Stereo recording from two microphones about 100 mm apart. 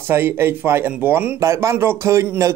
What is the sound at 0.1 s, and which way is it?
Speech, 25° right (ahead or behind).